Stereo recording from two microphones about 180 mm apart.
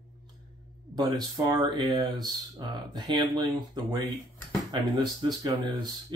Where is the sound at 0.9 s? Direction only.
25° right (ahead or behind).